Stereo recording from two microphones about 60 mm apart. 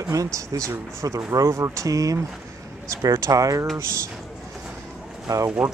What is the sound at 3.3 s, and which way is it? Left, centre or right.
Speech, right.